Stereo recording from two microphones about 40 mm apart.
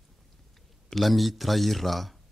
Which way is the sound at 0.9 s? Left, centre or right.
Centre.